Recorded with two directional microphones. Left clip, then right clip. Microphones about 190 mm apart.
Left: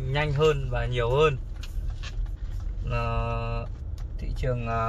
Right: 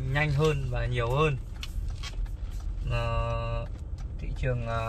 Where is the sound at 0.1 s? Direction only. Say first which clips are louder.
Left 4 dB; 30° left (ahead or behind).